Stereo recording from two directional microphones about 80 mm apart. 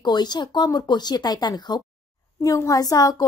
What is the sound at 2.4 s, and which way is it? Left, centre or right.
Speech, left.